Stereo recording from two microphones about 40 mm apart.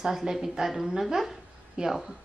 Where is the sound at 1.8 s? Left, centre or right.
Right.